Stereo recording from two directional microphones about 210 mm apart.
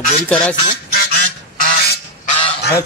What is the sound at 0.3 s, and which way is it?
Speech, 5° left (ahead or behind).